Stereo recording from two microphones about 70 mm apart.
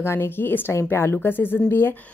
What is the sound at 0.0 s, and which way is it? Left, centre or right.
A woman's voice, left.